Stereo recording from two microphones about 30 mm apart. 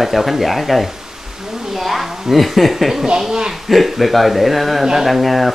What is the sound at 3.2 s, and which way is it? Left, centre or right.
Speech, centre.